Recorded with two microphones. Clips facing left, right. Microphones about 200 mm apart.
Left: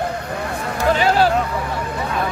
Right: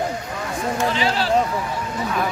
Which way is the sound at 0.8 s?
45° left (ahead or behind).